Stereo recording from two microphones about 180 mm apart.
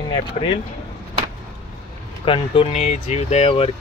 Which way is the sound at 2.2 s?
30° left (ahead or behind).